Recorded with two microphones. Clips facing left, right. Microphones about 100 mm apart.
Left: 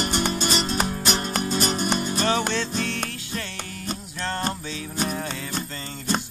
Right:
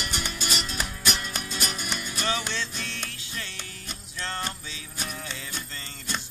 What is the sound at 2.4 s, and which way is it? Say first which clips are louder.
Music: left 8 dB; 55° left (ahead or behind).